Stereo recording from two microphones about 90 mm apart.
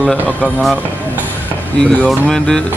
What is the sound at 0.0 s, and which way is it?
Speech, centre (ahead or behind).